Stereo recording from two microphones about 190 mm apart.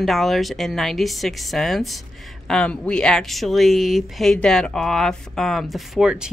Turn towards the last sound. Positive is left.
turn(degrees=-5)  # may be behind; listen again after turning